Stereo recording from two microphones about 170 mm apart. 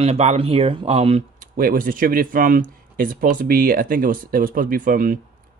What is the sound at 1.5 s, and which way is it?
Speech, 55° right (ahead or behind).